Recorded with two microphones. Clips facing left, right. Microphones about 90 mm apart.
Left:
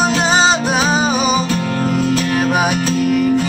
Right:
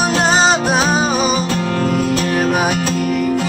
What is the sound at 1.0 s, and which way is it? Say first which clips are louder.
Music: left 1 dB; 45° right (ahead or behind).